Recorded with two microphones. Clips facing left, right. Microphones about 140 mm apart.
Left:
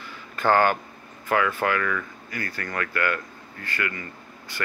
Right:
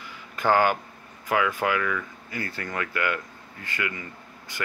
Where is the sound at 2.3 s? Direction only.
25° right (ahead or behind).